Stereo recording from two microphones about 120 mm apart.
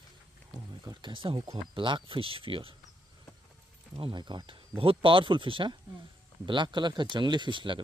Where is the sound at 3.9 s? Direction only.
45° right (ahead or behind).